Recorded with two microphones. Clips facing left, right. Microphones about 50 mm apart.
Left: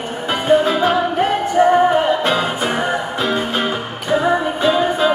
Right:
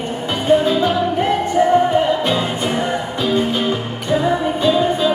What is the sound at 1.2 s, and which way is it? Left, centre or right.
Music, centre.